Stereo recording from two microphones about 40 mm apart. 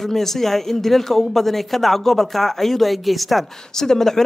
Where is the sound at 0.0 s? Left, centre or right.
Centre.